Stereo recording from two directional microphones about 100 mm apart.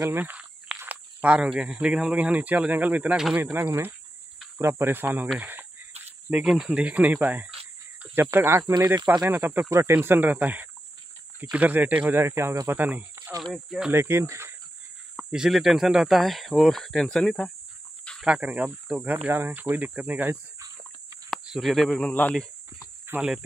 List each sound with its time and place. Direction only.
0.0 s speech: 20° right (ahead or behind)
5.4 s chicken: 20° right (ahead or behind)
6.3 s speech: 10° right (ahead or behind); by 8.7 s 25° right (ahead or behind)
8.7 s speech: 40° right (ahead or behind)
9.3 s speech: 20° right (ahead or behind)
13.4 s speech: centre (ahead or behind)
13.9 s speech: 25° right (ahead or behind)
15.1 s speech: 5° right (ahead or behind)
18.2 s speech: 10° right (ahead or behind)
21.5 s speech: centre (ahead or behind)
23.1 s speech: 20° right (ahead or behind)